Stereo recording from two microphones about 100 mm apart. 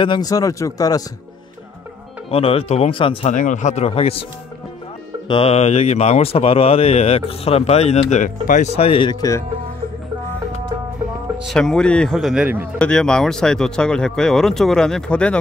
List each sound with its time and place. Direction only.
0.0 s speech: 50° left (ahead or behind)
0.3 s speech: 35° left (ahead or behind)
2.3 s speech: 75° left (ahead or behind)
5.3 s speech: 80° left
8.6 s speech: 75° left (ahead or behind)
9.1 s speech: 35° left (ahead or behind)
11.5 s speech: 10° left (ahead or behind)
12.2 s speech: 5° right (ahead or behind)
12.7 s speech: 10° left (ahead or behind)